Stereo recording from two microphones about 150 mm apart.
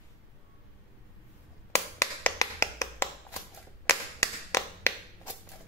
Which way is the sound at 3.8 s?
20° left (ahead or behind).